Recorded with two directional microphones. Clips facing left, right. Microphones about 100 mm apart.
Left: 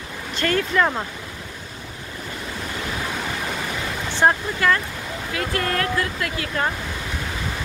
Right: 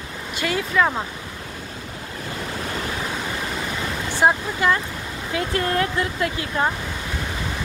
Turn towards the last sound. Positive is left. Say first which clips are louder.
# right 2 dB
turn(degrees=-25)  # may be behind; listen again after turning